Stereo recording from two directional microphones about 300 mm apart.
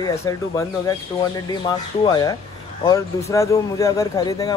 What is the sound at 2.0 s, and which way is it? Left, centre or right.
Speech, centre.